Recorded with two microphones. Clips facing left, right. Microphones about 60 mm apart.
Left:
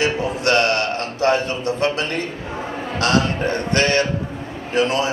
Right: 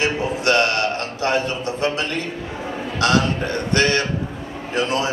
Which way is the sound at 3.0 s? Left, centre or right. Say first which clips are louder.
Even; left.